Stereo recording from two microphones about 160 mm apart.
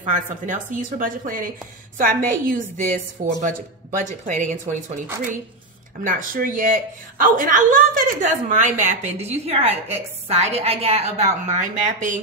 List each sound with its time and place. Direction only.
0.0 s a woman's voice: 55° right (ahead or behind)
6.0 s a woman's voice: 55° right (ahead or behind)